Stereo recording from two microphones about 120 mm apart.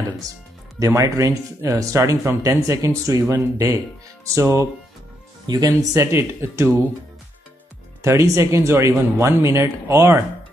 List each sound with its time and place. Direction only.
0.7 s speech: 25° right (ahead or behind)
5.5 s speech: 40° right (ahead or behind)
5.9 s speech: 20° right (ahead or behind)
8.0 s speech: 25° right (ahead or behind)